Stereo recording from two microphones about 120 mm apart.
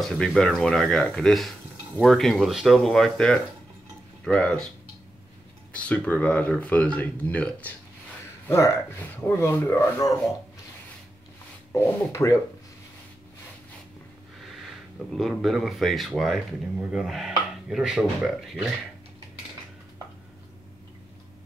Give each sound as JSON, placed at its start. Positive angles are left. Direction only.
{"t": 0.0, "sound": "speech", "side_deg": 0}
{"t": 5.7, "sound": "speech", "side_deg": 10}
{"t": 8.5, "sound": "speech", "side_deg": 25}
{"t": 11.7, "sound": "speech", "side_deg": 25}
{"t": 15.1, "sound": "speech", "side_deg": 0}